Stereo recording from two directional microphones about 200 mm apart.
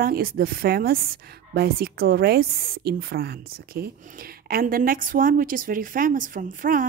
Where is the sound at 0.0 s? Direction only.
50° right (ahead or behind).